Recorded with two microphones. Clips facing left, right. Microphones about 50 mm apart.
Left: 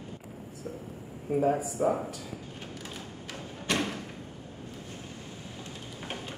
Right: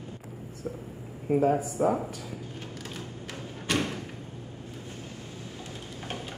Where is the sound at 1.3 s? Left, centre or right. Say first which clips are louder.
Right 3 dB; right.